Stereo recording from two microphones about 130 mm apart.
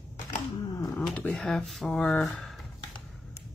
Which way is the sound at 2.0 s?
10° left (ahead or behind).